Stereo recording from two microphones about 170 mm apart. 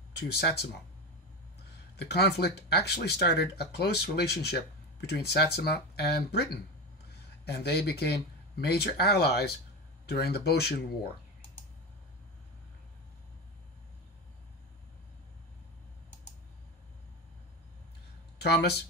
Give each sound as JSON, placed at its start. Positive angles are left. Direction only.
{"t": 0.3, "sound": "speech", "side_deg": 70}
{"t": 2.0, "sound": "speech", "side_deg": 75}
{"t": 18.4, "sound": "speech", "side_deg": 75}